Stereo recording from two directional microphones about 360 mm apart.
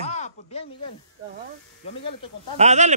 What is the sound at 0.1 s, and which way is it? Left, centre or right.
Snake, centre.